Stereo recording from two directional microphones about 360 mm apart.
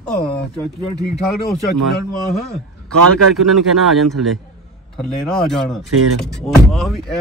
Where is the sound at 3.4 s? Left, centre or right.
Centre.